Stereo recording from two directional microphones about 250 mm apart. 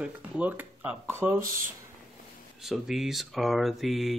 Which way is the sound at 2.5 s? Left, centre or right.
Centre.